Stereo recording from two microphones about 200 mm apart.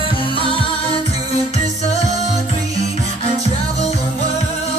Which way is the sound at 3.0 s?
35° right (ahead or behind).